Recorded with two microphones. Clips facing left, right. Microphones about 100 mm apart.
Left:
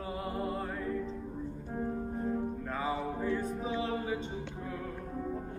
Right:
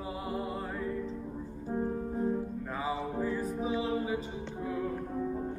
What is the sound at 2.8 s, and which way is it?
Music, 5° right (ahead or behind).